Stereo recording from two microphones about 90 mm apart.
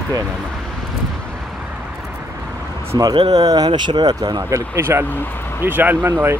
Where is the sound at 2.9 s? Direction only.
50° right (ahead or behind).